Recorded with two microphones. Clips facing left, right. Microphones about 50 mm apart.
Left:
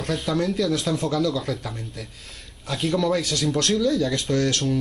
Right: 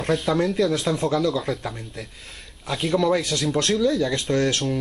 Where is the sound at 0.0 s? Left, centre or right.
Centre.